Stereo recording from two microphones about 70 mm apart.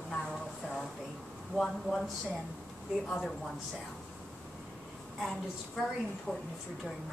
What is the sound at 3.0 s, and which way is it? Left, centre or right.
Speech, centre.